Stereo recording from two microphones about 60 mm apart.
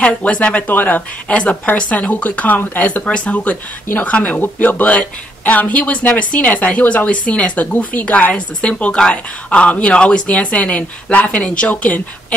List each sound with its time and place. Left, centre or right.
0.0 s speech: centre
0.7 s speech: left